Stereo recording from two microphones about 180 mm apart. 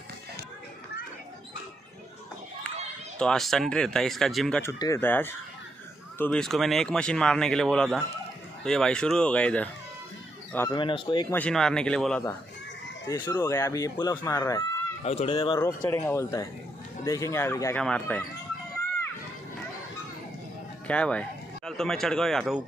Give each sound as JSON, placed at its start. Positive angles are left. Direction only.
{"t": 3.2, "sound": "speech", "side_deg": 5}
{"t": 10.7, "sound": "speech", "side_deg": 25}
{"t": 11.3, "sound": "speech", "side_deg": 5}
{"t": 13.1, "sound": "speech", "side_deg": 15}
{"t": 15.0, "sound": "speech", "side_deg": 35}
{"t": 15.6, "sound": "speech", "side_deg": 15}
{"t": 20.8, "sound": "speech", "side_deg": 5}